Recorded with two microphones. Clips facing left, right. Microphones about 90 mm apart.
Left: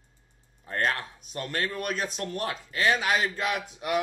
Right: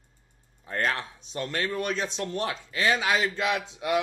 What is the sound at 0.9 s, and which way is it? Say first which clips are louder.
Speech: right 1 dB; 25° right (ahead or behind).